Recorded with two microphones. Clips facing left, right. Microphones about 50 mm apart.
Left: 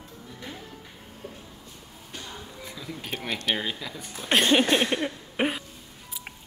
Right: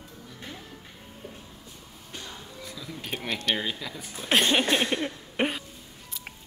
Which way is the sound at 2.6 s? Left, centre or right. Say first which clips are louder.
Left 1 dB; centre.